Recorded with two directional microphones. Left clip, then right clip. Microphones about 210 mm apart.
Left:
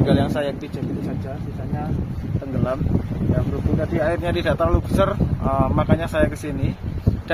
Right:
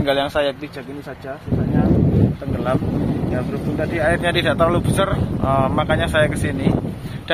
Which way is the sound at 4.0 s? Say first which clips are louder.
Right 5 dB; centre (ahead or behind).